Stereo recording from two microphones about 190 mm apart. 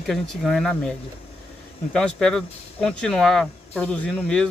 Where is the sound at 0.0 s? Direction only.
Centre (ahead or behind).